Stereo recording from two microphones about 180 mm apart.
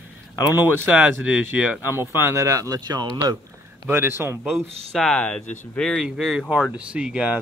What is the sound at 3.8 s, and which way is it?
Speech, 10° right (ahead or behind).